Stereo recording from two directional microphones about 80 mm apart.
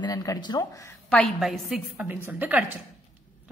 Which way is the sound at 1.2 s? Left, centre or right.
Centre.